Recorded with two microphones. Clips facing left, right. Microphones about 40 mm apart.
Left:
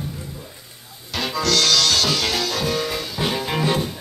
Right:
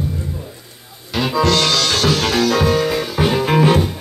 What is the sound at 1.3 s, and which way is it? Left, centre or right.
Music, right.